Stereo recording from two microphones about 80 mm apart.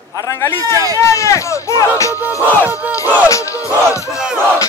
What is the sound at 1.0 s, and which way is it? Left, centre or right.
Speech, left.